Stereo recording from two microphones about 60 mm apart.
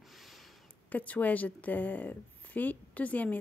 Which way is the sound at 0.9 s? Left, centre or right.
Left.